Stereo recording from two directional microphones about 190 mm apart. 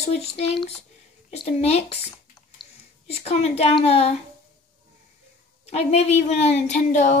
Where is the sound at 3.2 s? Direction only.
35° left (ahead or behind).